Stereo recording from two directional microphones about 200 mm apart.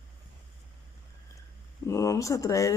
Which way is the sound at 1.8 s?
15° left (ahead or behind).